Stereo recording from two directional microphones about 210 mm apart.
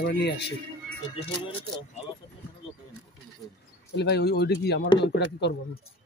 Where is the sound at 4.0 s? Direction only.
50° left (ahead or behind).